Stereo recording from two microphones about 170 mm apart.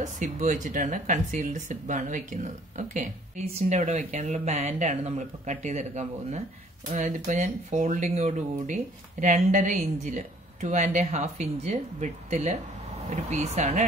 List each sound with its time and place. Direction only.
0.0 s speech: 45° right (ahead or behind)